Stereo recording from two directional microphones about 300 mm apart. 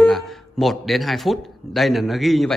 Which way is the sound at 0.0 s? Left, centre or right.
Centre.